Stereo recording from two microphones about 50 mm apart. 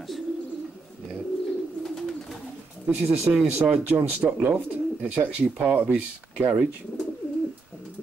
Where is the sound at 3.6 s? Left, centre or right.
Right.